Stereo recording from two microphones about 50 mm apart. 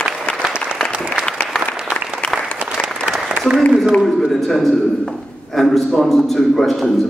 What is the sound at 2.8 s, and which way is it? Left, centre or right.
Applause, centre.